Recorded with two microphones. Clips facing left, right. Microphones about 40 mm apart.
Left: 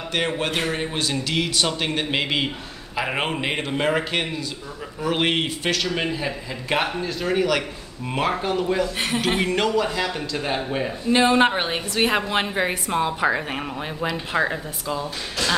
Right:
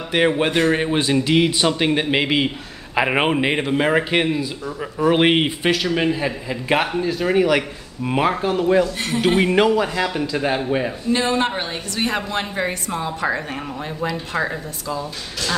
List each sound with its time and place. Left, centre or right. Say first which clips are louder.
0.1 s a man's voice: right 7 dB; centre
3.0 s a man's voice: right 6 dB; right; by 8.6 s centre
9.4 s a man's voice: right 6 dB; centre
11.1 s a woman's voice: left 4 dB; left